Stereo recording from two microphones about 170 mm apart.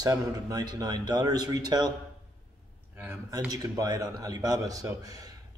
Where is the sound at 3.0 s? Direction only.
15° right (ahead or behind).